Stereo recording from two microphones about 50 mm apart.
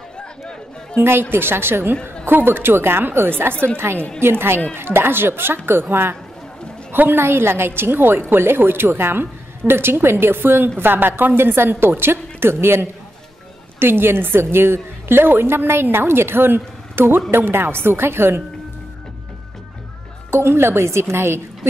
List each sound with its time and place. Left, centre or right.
0.9 s a woman's voice: right
20.2 s a woman's voice: right